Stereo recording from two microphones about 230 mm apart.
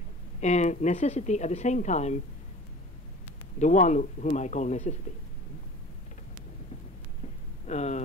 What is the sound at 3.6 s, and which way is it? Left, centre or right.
Speech, left.